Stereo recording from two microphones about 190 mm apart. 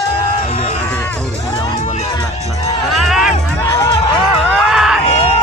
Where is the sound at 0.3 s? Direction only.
40° left (ahead or behind).